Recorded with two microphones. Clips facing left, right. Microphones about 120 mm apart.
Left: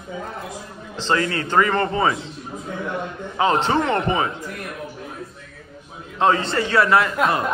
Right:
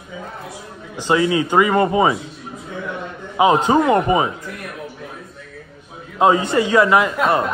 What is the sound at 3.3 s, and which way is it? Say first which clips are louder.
A man's voice: right 5 dB; 15° right (ahead or behind).